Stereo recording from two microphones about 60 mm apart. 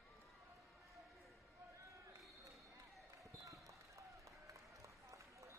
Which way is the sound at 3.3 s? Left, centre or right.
Right.